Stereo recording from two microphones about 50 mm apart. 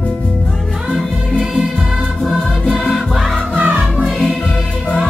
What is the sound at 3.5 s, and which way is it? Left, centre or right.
Music, right.